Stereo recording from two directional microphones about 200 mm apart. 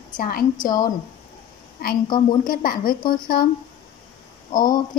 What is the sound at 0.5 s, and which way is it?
Speech, 20° left (ahead or behind).